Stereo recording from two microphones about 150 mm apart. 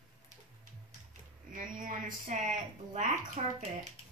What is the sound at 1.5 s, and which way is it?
A woman's voice, 65° right (ahead or behind).